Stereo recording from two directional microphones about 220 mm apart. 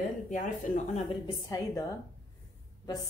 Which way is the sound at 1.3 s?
15° left (ahead or behind).